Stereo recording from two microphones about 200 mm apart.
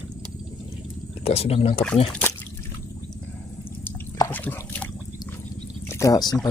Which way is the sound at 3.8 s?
10° left (ahead or behind).